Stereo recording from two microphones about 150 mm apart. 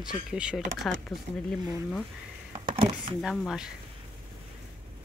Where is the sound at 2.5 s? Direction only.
35° right (ahead or behind).